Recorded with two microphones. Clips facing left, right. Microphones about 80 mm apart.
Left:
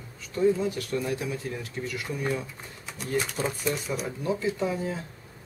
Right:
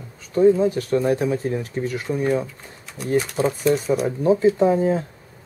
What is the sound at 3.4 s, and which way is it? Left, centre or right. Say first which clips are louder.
Speech: right 9 dB; right.